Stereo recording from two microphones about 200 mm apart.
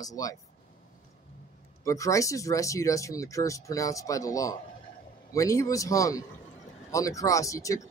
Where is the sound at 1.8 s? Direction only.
15° left (ahead or behind).